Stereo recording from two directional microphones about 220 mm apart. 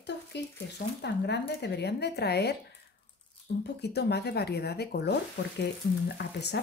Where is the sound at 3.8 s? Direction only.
50° left (ahead or behind).